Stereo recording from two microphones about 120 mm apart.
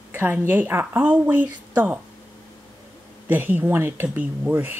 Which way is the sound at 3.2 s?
15° right (ahead or behind).